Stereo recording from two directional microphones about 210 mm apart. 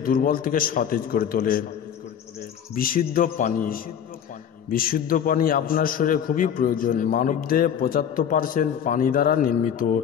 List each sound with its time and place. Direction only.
0.0 s a man's voice: 40° left (ahead or behind)
2.7 s a man's voice: 40° left (ahead or behind)